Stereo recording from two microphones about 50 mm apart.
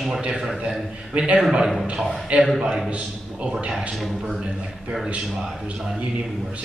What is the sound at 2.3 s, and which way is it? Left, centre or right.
A man's voice, right.